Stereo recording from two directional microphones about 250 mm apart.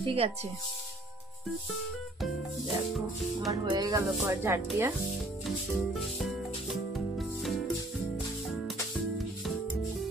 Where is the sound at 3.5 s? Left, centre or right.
Centre.